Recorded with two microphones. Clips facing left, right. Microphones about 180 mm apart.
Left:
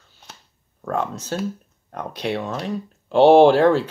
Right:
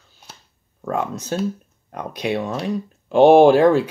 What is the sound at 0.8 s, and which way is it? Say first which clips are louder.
Speech: right 1 dB; 15° right (ahead or behind).